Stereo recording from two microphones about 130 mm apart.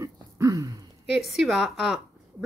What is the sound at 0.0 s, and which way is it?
Throat clearing, 25° right (ahead or behind).